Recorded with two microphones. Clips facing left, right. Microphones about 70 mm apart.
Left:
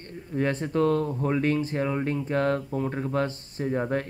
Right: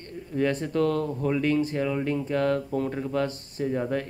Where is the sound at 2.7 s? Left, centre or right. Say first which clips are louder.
Right 1 dB; centre.